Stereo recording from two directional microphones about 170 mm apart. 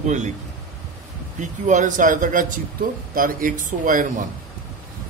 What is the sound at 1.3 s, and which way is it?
Speech, 45° right (ahead or behind).